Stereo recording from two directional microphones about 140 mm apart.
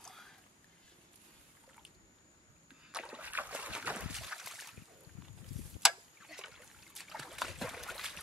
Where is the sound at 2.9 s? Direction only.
5° right (ahead or behind).